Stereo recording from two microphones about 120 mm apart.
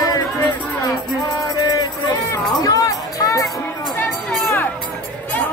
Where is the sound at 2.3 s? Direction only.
30° left (ahead or behind).